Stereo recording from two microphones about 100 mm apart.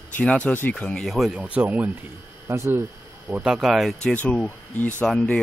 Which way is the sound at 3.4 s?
5° right (ahead or behind).